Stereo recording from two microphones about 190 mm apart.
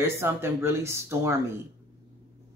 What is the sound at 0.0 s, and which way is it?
Speech, 15° right (ahead or behind).